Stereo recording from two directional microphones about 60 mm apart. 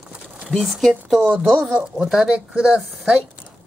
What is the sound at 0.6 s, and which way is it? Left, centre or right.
Speech, centre.